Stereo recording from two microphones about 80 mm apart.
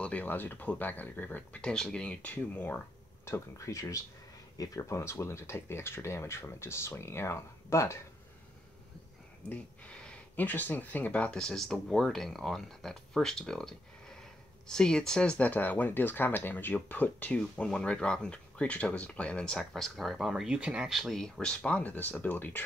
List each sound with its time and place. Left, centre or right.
0.0 s speech: left
3.3 s speech: left
9.5 s speech: centre